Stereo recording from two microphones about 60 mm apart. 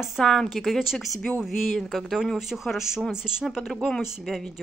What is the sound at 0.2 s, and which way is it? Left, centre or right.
Speech, centre.